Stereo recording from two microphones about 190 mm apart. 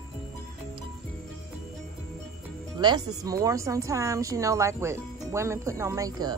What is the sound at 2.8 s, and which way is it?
A woman's voice, 20° right (ahead or behind).